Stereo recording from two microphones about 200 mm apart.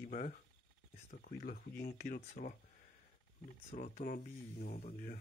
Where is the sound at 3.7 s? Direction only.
40° left (ahead or behind).